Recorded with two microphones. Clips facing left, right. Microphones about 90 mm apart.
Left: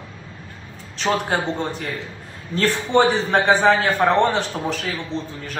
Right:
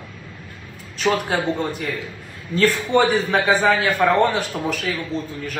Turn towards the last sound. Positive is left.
turn(degrees=30)  # may be behind; listen again after turning